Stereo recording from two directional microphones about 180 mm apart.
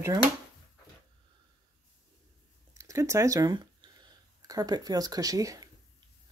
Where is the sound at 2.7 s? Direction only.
15° right (ahead or behind).